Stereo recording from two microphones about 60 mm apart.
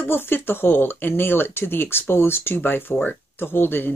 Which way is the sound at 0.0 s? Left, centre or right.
Left.